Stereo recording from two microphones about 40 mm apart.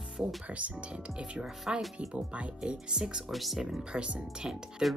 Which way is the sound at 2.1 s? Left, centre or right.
Right.